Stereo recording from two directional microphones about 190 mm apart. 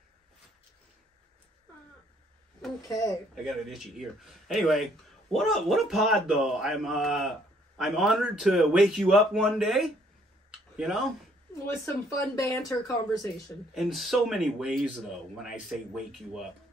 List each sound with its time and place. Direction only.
2.9 s speech: 20° left (ahead or behind)
3.4 s speech: centre (ahead or behind)
11.6 s speech: 15° left (ahead or behind)
13.7 s speech: centre (ahead or behind)